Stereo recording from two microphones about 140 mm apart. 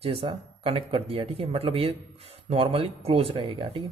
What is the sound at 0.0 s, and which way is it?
Speech, 40° right (ahead or behind).